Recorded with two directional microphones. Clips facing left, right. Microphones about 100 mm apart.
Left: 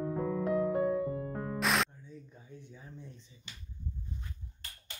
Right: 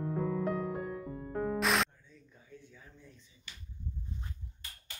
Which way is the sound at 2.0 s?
20° left (ahead or behind).